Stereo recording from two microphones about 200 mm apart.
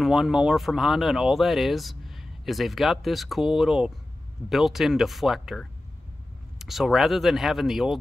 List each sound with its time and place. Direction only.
0.0 s speech: centre (ahead or behind)